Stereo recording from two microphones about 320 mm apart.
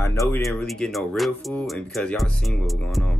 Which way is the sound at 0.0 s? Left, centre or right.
Centre.